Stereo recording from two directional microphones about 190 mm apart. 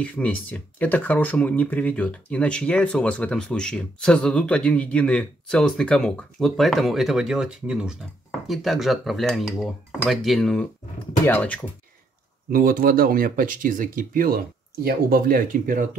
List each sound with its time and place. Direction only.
0.0 s speech: 5° left (ahead or behind)
12.4 s speech: 50° right (ahead or behind)